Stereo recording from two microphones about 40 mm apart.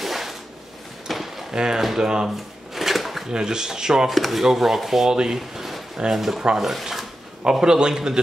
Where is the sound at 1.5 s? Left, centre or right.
Centre.